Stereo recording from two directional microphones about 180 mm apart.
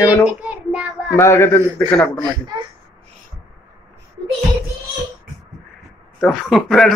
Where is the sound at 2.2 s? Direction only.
25° right (ahead or behind).